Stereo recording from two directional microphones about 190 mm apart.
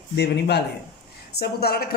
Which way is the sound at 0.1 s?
65° left (ahead or behind).